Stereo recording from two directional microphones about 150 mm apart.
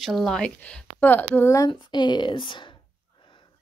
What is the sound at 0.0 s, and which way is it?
A woman's voice, centre (ahead or behind).